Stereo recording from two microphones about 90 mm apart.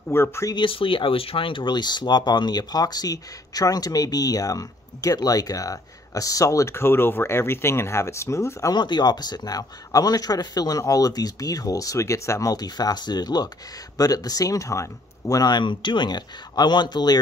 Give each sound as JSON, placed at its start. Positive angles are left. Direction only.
{"t": 0.1, "sound": "speech", "side_deg": 30}
{"t": 0.6, "sound": "speech", "side_deg": 75}
{"t": 8.7, "sound": "speech", "side_deg": 55}